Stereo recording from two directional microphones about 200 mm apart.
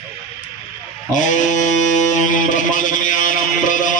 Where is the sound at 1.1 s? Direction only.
40° left (ahead or behind).